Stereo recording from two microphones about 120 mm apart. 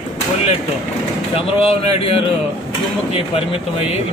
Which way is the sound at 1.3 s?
50° left (ahead or behind).